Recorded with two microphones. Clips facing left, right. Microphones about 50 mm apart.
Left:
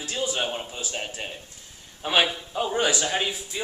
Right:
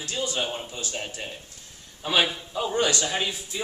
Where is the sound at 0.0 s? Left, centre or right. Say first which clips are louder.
Left 1 dB; centre.